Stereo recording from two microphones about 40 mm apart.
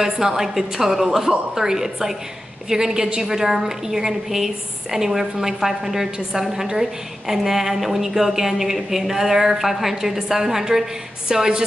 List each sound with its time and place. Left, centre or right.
0.0 s a woman's voice: centre